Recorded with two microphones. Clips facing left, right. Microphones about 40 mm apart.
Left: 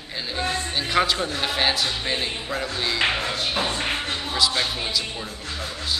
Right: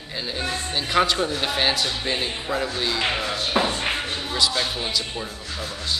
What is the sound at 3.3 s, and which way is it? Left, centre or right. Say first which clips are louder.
Music: right 3 dB; right.